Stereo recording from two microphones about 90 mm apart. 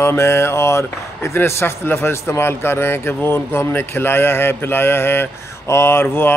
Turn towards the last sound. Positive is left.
turn(degrees=25)  # may be behind; listen again after turning